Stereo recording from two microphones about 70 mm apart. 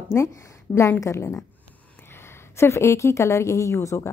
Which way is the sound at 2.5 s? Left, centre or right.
Left.